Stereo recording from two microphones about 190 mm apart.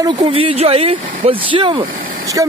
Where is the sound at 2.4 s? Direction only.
15° right (ahead or behind).